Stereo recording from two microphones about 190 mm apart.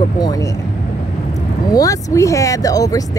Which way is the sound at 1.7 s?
15° left (ahead or behind).